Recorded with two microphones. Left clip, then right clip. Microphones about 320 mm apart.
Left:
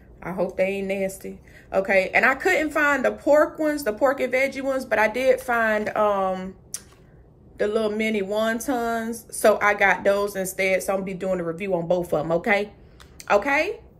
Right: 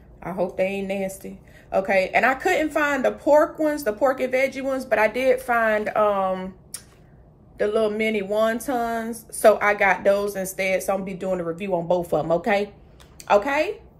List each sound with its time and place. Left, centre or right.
0.2 s speech: centre
7.5 s speech: centre